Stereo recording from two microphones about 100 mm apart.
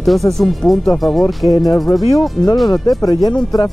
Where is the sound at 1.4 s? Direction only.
30° right (ahead or behind).